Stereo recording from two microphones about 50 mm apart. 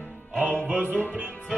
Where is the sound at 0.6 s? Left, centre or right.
Right.